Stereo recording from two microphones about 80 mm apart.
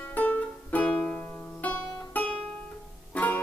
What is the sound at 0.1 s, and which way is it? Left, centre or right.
Music, centre.